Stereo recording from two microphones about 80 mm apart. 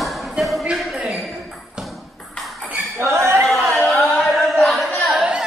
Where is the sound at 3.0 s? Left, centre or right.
Right.